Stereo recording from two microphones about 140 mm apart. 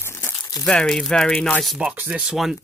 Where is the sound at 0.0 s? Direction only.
15° left (ahead or behind).